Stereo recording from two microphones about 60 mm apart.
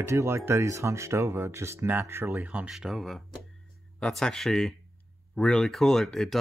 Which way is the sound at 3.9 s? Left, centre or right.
Centre.